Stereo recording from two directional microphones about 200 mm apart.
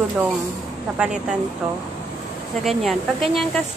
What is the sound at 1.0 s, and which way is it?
Speech, 5° right (ahead or behind).